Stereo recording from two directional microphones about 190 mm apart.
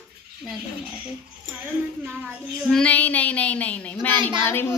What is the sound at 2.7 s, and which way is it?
Speech, 5° left (ahead or behind).